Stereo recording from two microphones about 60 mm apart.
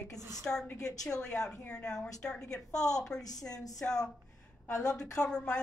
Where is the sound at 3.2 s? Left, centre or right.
Left.